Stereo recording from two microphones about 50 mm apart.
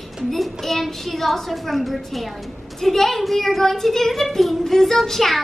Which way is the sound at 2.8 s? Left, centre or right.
Centre.